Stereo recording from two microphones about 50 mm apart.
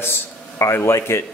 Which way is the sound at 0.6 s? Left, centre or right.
Left.